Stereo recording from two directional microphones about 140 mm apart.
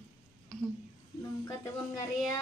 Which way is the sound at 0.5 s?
5° left (ahead or behind).